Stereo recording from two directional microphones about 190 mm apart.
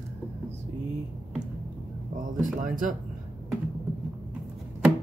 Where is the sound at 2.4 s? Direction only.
45° right (ahead or behind).